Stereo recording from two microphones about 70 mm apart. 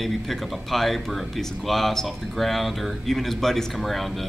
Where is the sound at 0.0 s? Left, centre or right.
Centre.